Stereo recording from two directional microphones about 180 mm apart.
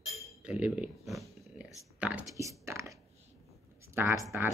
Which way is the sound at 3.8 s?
10° right (ahead or behind).